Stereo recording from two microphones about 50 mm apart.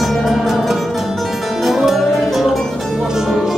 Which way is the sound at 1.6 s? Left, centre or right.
Centre.